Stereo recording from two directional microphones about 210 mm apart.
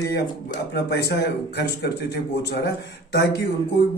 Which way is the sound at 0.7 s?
50° left (ahead or behind).